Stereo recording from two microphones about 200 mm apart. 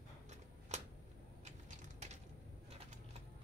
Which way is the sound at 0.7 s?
35° right (ahead or behind).